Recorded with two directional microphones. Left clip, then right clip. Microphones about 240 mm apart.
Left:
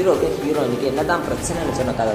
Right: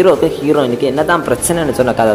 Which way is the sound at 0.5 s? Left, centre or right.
Right.